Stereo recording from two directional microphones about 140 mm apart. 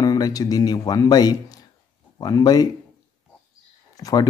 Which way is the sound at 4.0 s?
25° left (ahead or behind).